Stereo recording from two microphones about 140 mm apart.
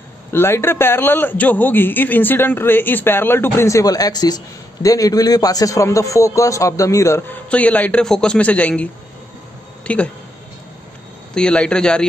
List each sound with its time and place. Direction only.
0.3 s a man's voice: 15° left (ahead or behind)
9.9 s a man's voice: 10° left (ahead or behind)
11.3 s a man's voice: 10° left (ahead or behind)